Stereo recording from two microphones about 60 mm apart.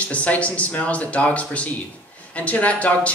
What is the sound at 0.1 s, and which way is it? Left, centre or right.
Speech, left.